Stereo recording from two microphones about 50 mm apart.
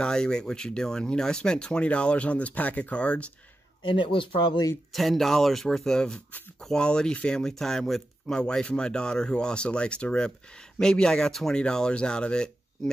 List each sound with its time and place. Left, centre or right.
0.0 s speech: centre
4.9 s speech: centre